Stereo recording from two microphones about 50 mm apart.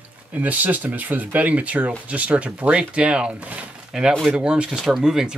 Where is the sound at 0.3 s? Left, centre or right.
Right.